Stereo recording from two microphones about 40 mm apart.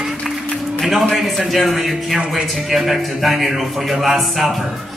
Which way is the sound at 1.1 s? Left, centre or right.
Centre.